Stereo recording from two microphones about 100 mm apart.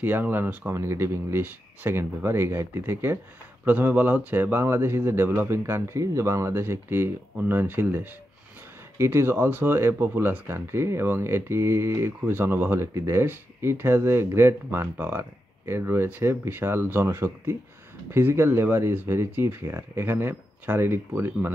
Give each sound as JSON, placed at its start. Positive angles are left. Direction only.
{"t": 0.0, "sound": "speech", "side_deg": -20}